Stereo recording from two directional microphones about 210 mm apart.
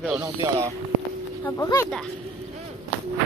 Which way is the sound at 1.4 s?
15° left (ahead or behind).